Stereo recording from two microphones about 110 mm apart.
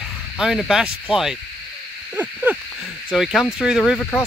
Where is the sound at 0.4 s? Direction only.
5° right (ahead or behind).